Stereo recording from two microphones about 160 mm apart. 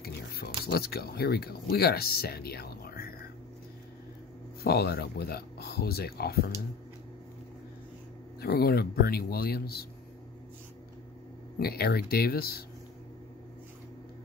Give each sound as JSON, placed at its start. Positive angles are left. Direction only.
{"t": 0.0, "sound": "speech", "side_deg": 80}
{"t": 4.6, "sound": "speech", "side_deg": 80}
{"t": 8.4, "sound": "speech", "side_deg": 75}
{"t": 11.5, "sound": "speech", "side_deg": 75}